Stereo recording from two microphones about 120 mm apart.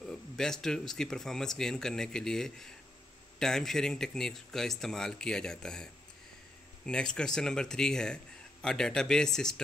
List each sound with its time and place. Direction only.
0.0 s speech: 5° left (ahead or behind)
6.9 s speech: 5° left (ahead or behind)